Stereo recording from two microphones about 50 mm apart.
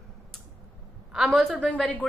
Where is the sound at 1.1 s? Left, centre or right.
Centre.